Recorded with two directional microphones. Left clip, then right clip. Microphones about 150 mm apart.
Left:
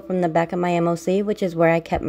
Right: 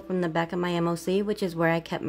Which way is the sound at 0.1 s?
20° left (ahead or behind).